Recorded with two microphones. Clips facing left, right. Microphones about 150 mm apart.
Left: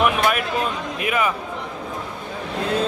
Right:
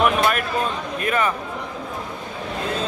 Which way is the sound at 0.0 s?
5° left (ahead or behind).